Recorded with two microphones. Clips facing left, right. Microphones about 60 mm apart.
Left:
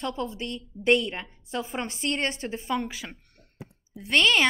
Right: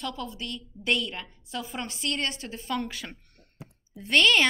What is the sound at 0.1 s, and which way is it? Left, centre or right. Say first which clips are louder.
A woman's voice: left 4 dB; left.